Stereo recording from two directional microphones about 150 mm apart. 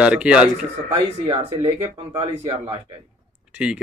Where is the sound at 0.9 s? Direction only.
35° right (ahead or behind).